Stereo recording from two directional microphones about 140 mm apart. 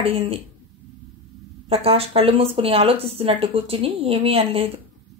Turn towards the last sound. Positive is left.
turn(degrees=-45)  # may be behind; listen again after turning